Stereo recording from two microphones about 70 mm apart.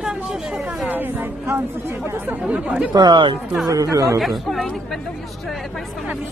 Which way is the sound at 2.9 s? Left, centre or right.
Right.